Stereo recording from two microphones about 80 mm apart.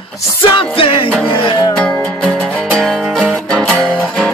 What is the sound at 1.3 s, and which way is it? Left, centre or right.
Music, left.